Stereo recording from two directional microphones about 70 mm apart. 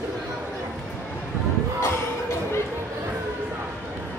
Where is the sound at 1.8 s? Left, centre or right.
Left.